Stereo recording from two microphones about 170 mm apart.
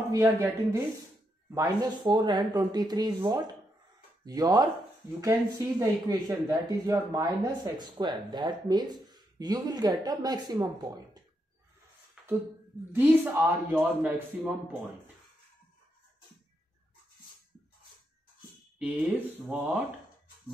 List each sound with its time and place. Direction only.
0.1 s speech: 20° right (ahead or behind)
12.9 s a man's voice: 10° right (ahead or behind)
18.8 s a man's voice: 10° right (ahead or behind)